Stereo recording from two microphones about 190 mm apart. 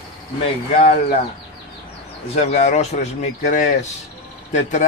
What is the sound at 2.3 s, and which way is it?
Speech, 35° left (ahead or behind).